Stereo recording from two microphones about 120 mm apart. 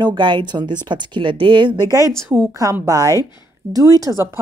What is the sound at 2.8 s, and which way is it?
Speech, 30° right (ahead or behind).